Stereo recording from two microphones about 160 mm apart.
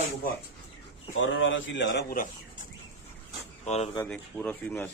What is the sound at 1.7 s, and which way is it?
Speech, 90° left.